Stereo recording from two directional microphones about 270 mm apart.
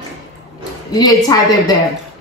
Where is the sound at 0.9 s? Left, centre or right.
Centre.